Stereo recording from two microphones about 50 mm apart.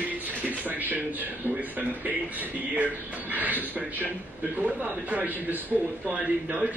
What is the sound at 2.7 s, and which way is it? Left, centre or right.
Speech, right.